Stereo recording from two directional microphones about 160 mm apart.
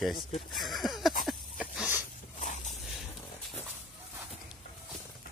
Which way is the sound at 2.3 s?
50° left (ahead or behind).